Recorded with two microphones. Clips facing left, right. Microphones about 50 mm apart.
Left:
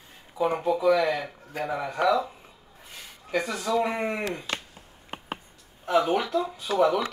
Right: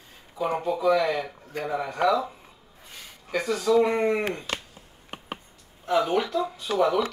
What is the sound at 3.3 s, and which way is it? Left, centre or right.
Speech, centre.